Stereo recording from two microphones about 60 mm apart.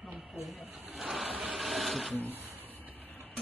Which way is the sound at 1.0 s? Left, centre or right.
Centre.